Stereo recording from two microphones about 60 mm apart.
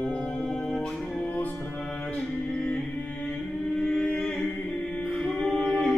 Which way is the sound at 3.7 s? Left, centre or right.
Centre.